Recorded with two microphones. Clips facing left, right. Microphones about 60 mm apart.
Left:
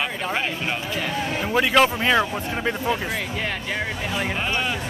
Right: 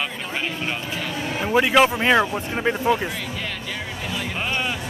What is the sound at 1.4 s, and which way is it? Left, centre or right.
Speech, centre.